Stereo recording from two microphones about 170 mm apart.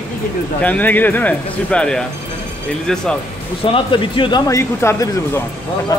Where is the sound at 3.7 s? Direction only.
30° left (ahead or behind).